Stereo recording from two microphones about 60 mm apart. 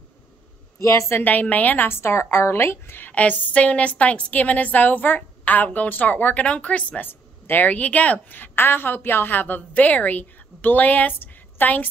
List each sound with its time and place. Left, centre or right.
0.7 s a woman's voice: left
1.2 s speech: left
1.9 s speech: left
3.1 s speech: left
7.1 s speech: left